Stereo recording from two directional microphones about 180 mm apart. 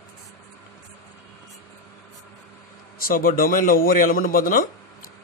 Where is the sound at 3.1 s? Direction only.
50° left (ahead or behind).